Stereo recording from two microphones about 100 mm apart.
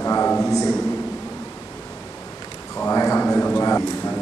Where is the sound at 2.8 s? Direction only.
25° left (ahead or behind).